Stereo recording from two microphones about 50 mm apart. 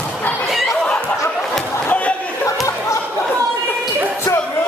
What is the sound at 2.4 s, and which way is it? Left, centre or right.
Chatter, left.